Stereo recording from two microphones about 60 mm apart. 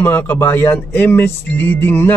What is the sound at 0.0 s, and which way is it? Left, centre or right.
A man's voice, left.